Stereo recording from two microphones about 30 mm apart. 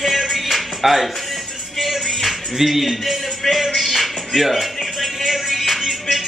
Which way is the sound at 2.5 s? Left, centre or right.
Centre.